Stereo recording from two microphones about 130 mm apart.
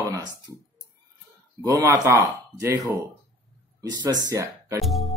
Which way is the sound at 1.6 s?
25° right (ahead or behind).